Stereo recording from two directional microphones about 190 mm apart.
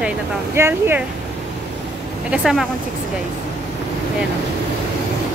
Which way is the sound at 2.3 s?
Centre (ahead or behind).